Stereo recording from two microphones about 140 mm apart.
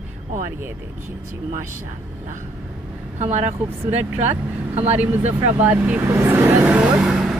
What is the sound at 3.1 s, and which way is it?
Speech, 50° right (ahead or behind).